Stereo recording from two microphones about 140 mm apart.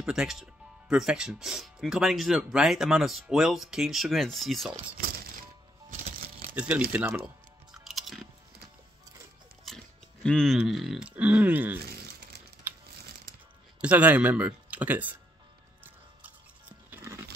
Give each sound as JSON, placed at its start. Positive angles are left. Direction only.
{"t": 0.0, "sound": "speech", "side_deg": -5}
{"t": 6.5, "sound": "speech", "side_deg": -10}
{"t": 7.7, "sound": "chewing", "side_deg": 0}
{"t": 9.7, "sound": "music", "side_deg": 0}
{"t": 10.2, "sound": "speech", "side_deg": 5}
{"t": 12.7, "sound": "crumpling", "side_deg": -15}
{"t": 13.7, "sound": "speech", "side_deg": -10}
{"t": 16.9, "sound": "music", "side_deg": -15}